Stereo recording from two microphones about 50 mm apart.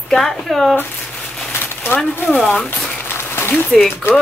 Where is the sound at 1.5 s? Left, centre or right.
Left.